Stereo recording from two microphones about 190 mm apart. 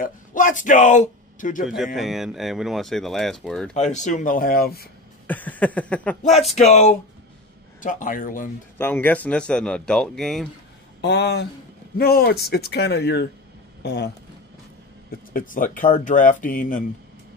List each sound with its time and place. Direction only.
0.0 s speech: 45° left (ahead or behind)
2.0 s speech: centre (ahead or behind)
3.7 s speech: 40° left (ahead or behind)
5.2 s a sound: 10° left (ahead or behind)
6.5 s speech: 40° left (ahead or behind)
8.7 s speech: 10° left (ahead or behind)
11.0 s speech: 60° left (ahead or behind)
15.0 s speech: 45° left (ahead or behind)